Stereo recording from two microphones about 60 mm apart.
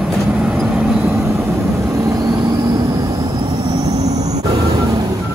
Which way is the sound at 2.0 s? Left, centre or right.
Right.